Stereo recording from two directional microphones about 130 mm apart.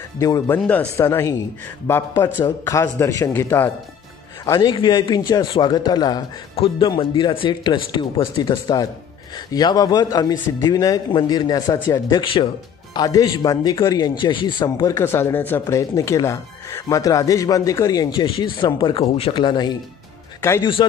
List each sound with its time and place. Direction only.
0.7 s a man's voice: 15° left (ahead or behind)
4.6 s speech: 40° left (ahead or behind)
6.5 s speech: 50° left (ahead or behind)
6.9 s a man's voice: 35° left (ahead or behind)